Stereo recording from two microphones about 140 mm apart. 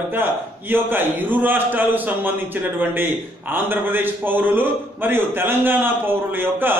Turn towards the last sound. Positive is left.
turn(degrees=-15)  # may be behind; listen again after turning